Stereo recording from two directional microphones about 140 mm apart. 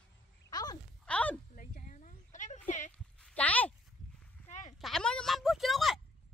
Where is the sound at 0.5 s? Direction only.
25° left (ahead or behind).